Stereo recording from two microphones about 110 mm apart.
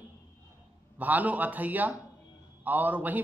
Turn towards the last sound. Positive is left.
turn(degrees=-15)  # may be behind; listen again after turning